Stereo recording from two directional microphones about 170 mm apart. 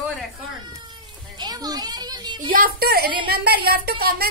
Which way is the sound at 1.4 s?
20° right (ahead or behind).